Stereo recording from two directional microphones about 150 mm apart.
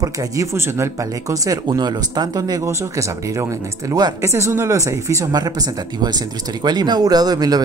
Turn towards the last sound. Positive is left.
turn(degrees=-25)  # may be behind; listen again after turning